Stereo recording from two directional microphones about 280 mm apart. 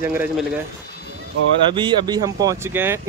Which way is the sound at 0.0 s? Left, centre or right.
Centre.